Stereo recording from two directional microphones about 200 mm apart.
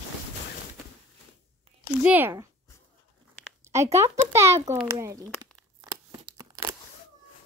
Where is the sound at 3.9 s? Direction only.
15° right (ahead or behind).